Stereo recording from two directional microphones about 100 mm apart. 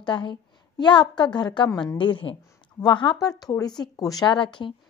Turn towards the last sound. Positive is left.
turn(degrees=55)  # may be behind; listen again after turning